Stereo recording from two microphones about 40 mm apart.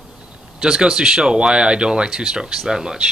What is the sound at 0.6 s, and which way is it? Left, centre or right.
Speech, centre.